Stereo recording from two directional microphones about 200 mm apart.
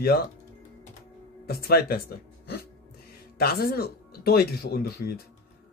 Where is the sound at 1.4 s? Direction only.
50° left (ahead or behind).